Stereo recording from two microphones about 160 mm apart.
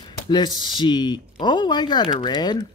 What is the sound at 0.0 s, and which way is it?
Speech, 25° left (ahead or behind).